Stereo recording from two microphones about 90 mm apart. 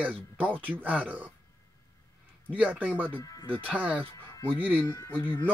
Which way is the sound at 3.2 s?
45° left (ahead or behind).